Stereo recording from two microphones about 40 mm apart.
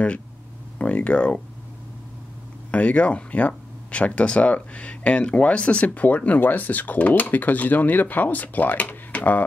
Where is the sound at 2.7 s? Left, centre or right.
Left.